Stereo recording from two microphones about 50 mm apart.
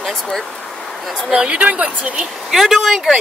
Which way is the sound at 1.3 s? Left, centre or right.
Right.